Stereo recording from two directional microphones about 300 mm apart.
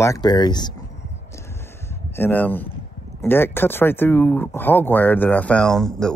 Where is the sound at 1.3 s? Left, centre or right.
Centre.